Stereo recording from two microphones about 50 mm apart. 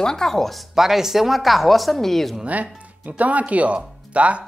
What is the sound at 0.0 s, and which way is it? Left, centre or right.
Speech, centre.